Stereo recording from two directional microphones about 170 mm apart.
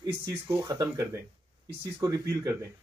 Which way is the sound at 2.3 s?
15° right (ahead or behind).